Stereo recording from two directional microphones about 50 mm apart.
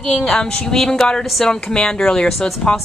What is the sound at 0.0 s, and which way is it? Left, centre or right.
Speech, left.